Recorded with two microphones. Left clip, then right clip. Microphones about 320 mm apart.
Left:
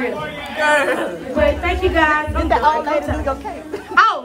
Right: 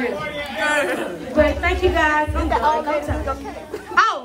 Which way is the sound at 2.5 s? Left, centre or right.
Left.